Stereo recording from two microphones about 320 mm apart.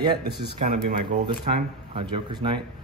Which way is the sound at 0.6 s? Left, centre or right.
Right.